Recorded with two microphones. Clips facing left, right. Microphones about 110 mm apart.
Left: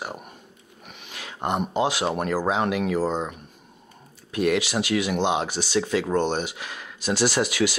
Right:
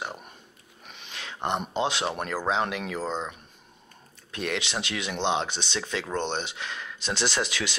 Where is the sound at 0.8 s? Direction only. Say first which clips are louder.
Left 1 dB; 15° left (ahead or behind).